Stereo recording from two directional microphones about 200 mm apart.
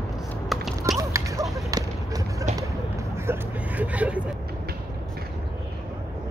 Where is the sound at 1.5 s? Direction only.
15° right (ahead or behind).